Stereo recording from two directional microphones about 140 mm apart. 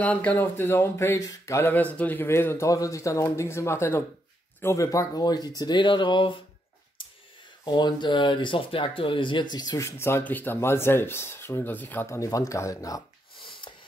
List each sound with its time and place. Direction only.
0.0 s speech: 10° left (ahead or behind); by 6.3 s 35° left (ahead or behind)
7.6 s speech: 30° left (ahead or behind)